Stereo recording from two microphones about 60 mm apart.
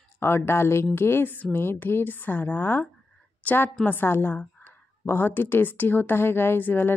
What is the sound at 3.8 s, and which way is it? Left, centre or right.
A woman's voice, left.